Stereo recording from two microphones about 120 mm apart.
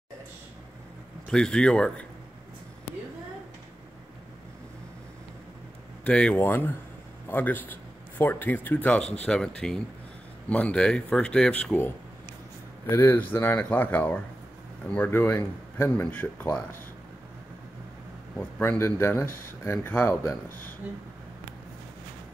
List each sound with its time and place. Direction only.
1.3 s speech: 5° left (ahead or behind)
6.0 s a man's voice: 10° left (ahead or behind)
18.3 s speech: 20° left (ahead or behind)